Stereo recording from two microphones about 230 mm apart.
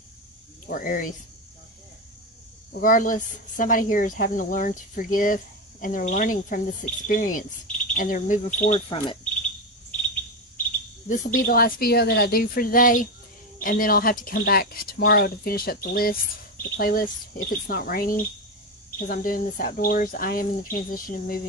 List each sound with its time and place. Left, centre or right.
0.7 s speech: left
2.7 s speech: left
11.3 s speech: left